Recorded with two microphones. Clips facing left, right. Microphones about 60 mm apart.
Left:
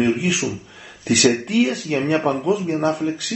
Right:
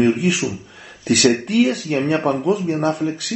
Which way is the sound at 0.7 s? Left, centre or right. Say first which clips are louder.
Right 1 dB; centre.